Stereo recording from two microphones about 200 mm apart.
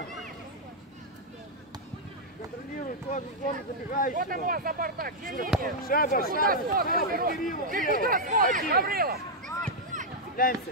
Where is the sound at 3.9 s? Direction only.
45° left (ahead or behind).